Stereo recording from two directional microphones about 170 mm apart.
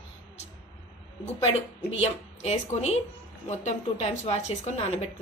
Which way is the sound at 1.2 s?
35° left (ahead or behind).